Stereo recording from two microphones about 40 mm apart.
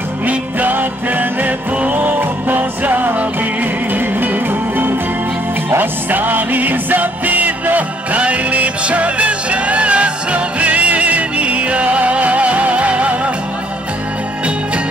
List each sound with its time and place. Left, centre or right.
0.3 s music: right